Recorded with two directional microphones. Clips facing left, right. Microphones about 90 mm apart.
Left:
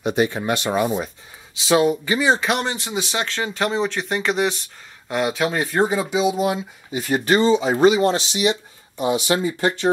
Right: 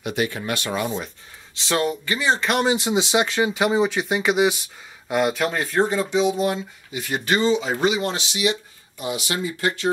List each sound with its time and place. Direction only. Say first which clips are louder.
0.0 s speech: left 5 dB; 25° left (ahead or behind); by 2.6 s 5° left (ahead or behind)
2.6 s speech: right 5 dB; 15° right (ahead or behind); by 6.6 s 5° left (ahead or behind)
6.9 s speech: left 4 dB; 35° left (ahead or behind)